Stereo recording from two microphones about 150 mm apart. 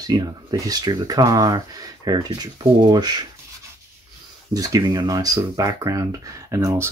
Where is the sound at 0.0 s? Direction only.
25° right (ahead or behind).